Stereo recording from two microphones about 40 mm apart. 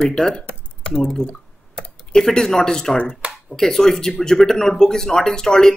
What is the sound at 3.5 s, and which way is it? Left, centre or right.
Speech, centre.